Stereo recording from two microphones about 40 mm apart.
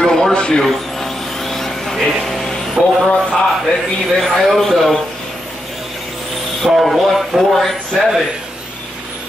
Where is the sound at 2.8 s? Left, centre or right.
Right.